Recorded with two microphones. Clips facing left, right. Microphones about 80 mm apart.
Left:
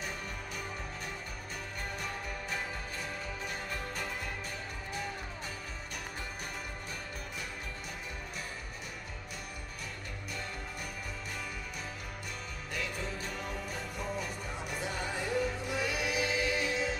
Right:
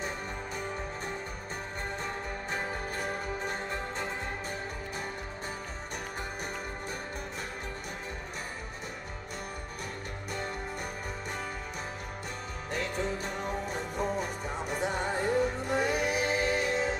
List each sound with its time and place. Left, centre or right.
2.0 s music: right
3.7 s music: right
12.7 s music: right